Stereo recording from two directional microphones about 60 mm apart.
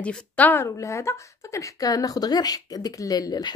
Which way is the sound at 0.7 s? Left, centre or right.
Left.